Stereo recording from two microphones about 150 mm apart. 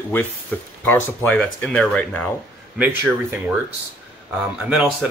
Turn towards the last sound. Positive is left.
turn(degrees=-10)  # may be behind; listen again after turning